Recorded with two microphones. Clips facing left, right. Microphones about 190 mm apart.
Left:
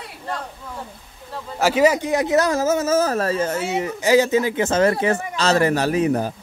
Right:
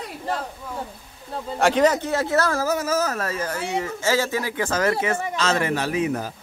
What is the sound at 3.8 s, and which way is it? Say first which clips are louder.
Speech: left 6 dB; 15° left (ahead or behind).